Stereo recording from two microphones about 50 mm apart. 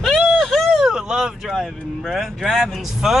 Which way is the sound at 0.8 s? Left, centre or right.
Centre.